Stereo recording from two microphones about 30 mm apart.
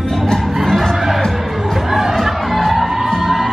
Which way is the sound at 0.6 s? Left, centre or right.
Centre.